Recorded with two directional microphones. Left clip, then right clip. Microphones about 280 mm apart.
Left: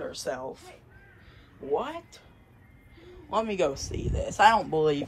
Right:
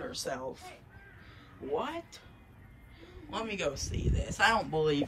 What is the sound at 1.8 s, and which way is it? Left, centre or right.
Speech, centre.